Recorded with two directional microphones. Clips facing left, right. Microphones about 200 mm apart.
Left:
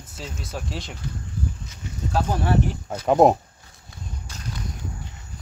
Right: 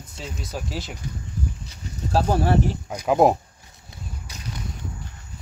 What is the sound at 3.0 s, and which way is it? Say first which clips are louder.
Speech: left 1 dB; centre (ahead or behind).